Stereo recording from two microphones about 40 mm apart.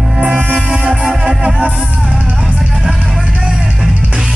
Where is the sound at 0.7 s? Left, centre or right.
Centre.